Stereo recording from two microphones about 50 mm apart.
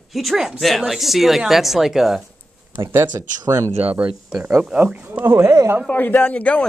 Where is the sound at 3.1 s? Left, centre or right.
Right.